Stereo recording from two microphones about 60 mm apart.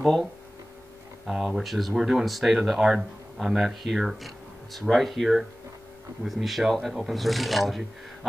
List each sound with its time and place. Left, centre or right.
1.2 s speech: centre